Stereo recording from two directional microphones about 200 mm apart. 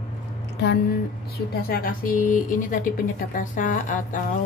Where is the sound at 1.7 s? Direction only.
45° left (ahead or behind).